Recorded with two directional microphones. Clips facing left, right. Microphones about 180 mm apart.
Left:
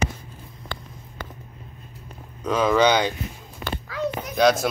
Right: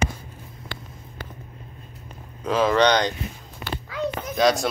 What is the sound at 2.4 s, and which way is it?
Speech, centre (ahead or behind).